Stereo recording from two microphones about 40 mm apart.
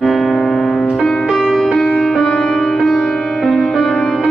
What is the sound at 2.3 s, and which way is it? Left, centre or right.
Music, left.